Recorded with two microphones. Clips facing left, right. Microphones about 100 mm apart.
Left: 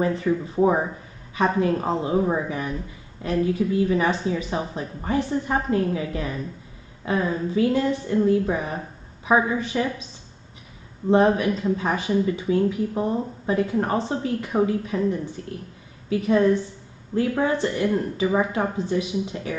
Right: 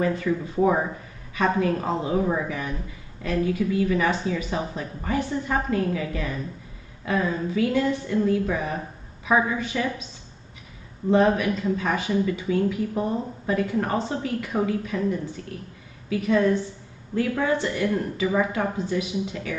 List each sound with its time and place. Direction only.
0.0 s speech: 25° left (ahead or behind)
11.1 s speech: 25° left (ahead or behind)